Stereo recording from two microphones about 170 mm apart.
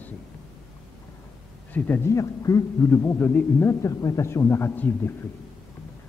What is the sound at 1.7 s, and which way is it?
A man's voice, 10° left (ahead or behind).